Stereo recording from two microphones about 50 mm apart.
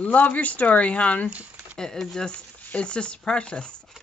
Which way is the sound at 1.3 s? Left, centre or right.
Right.